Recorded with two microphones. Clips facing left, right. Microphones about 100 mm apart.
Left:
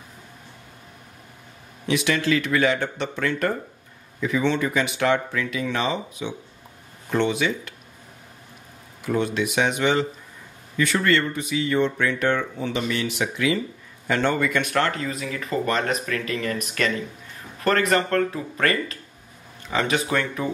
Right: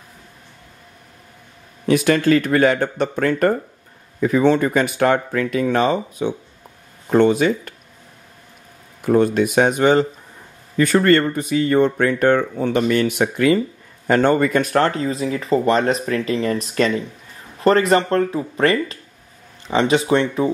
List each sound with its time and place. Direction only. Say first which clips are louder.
1.9 s speech: right 7 dB; 45° right (ahead or behind)
9.0 s speech: right 8 dB; 45° right (ahead or behind); by 20.4 s 30° right (ahead or behind)